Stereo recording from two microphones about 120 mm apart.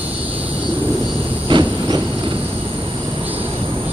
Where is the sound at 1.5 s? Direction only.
40° right (ahead or behind).